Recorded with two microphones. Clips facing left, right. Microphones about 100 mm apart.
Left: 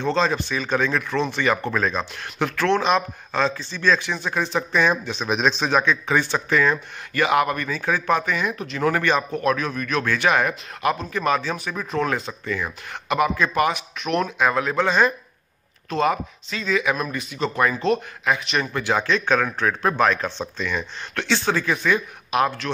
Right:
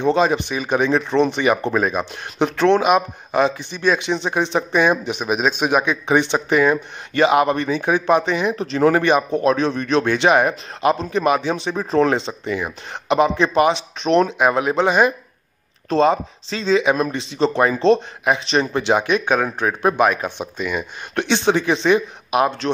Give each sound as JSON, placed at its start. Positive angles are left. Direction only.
{"t": 0.0, "sound": "speech", "side_deg": -15}
{"t": 9.0, "sound": "speech", "side_deg": -20}
{"t": 15.9, "sound": "speech", "side_deg": -30}
{"t": 21.1, "sound": "speech", "side_deg": -20}